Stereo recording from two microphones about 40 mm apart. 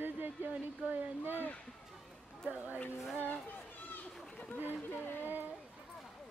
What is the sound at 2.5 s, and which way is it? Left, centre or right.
Speech, right.